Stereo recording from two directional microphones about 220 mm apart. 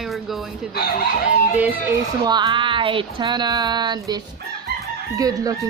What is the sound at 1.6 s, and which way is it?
Speech, 10° right (ahead or behind).